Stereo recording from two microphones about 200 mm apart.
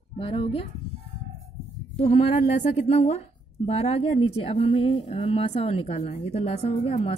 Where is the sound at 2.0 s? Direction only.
35° left (ahead or behind).